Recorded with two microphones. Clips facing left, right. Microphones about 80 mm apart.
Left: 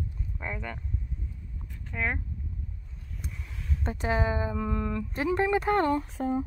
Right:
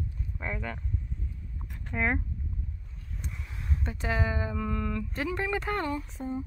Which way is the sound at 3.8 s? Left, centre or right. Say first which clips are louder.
Left 3 dB; left.